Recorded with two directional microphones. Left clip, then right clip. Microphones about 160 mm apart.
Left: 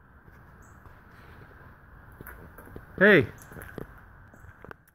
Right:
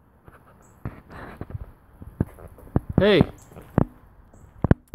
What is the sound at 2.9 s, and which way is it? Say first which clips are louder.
Speech: even; 35° right (ahead or behind).